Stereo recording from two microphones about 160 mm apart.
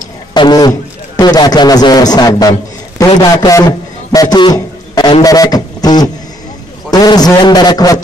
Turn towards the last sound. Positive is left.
turn(degrees=25)  # may be behind; listen again after turning